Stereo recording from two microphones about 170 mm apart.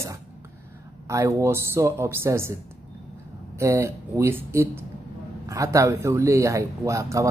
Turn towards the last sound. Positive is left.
turn(degrees=-20)  # may be behind; listen again after turning